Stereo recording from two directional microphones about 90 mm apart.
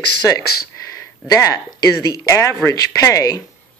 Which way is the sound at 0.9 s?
35° left (ahead or behind).